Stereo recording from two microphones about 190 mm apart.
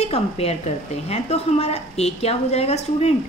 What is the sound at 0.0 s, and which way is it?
A woman's voice, 35° left (ahead or behind).